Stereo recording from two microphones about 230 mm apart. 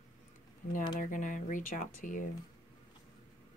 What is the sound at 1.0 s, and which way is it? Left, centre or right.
Speech, left.